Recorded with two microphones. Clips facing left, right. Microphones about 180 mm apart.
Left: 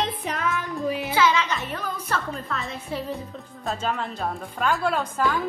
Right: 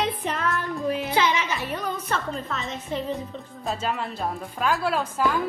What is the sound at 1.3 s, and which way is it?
Music, 10° right (ahead or behind).